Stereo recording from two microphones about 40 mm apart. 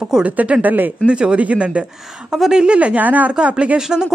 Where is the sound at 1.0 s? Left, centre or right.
Right.